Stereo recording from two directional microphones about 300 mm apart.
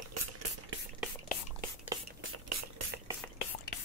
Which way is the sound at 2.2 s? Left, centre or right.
Right.